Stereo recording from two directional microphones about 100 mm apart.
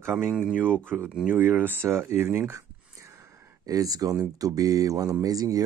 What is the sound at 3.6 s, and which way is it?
Speech, 35° right (ahead or behind).